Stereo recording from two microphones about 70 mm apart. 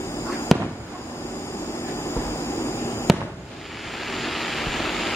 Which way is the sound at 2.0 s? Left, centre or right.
Left.